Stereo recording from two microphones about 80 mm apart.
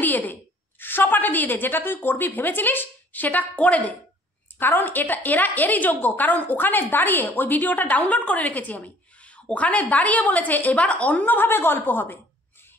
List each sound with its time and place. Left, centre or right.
0.0 s a woman's voice: left